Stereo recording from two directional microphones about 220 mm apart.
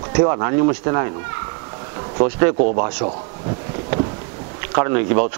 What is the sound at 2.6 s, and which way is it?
Speech, 35° right (ahead or behind).